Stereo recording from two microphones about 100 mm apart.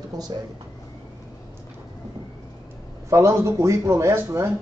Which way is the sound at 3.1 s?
30° right (ahead or behind).